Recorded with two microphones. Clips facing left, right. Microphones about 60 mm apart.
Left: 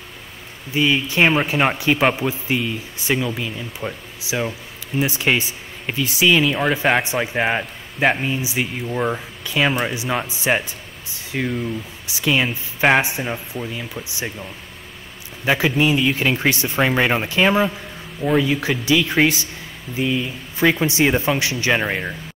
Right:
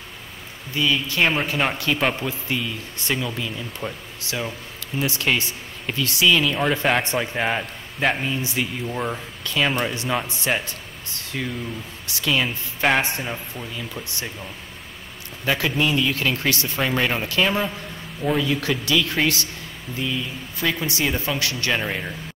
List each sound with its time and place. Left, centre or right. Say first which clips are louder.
0.7 s a man's voice: left 4 dB; left
15.4 s a man's voice: left 4 dB; centre